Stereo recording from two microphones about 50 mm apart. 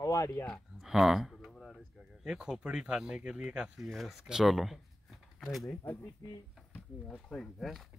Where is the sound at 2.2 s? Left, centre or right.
Centre.